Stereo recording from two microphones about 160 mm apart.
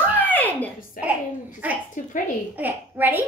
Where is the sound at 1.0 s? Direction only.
60° left (ahead or behind).